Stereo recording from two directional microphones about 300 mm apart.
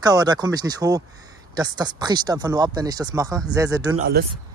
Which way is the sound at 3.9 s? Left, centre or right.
Right.